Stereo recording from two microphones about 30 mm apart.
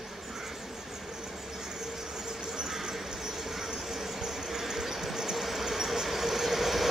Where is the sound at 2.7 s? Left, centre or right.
Centre.